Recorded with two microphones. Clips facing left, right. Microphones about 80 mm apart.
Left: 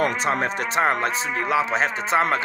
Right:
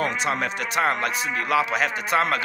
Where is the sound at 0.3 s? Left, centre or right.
Left.